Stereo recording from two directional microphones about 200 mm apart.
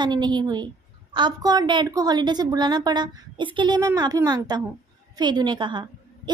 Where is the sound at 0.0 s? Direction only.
20° right (ahead or behind).